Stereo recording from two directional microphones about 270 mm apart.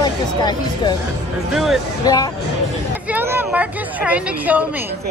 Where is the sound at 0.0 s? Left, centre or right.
Centre.